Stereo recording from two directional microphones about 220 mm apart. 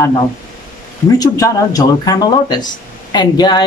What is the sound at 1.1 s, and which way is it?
Speech, 15° left (ahead or behind).